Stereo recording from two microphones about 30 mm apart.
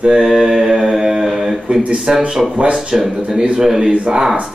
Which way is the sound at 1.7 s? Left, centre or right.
Right.